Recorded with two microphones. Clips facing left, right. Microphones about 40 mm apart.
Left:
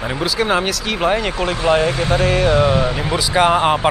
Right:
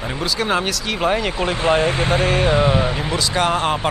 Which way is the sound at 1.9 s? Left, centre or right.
Right.